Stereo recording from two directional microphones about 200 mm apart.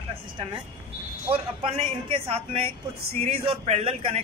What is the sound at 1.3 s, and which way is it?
Speech, 30° right (ahead or behind).